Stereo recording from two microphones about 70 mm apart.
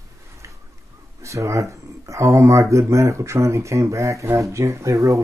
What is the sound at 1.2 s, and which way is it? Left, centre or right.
Speech, right.